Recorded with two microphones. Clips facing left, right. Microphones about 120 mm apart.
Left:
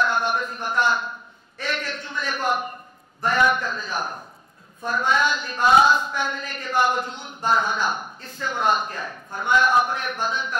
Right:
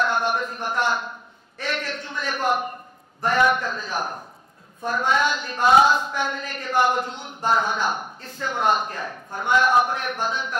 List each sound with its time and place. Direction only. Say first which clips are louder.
0.0 s a sound: even; 55° right (ahead or behind)
3.2 s speech: right 1 dB; 50° right (ahead or behind)
9.5 s speech: right 1 dB; 55° right (ahead or behind)